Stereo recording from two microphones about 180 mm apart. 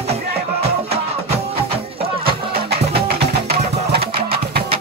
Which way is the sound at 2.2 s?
55° right (ahead or behind).